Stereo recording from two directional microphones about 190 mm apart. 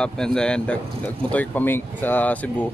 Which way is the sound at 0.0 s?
5° left (ahead or behind).